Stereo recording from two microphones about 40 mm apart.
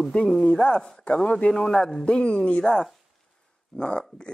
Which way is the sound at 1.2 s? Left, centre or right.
Left.